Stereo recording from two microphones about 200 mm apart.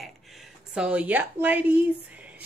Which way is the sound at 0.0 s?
Centre (ahead or behind).